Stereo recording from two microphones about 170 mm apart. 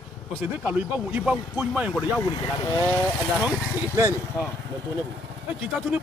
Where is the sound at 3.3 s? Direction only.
5° right (ahead or behind).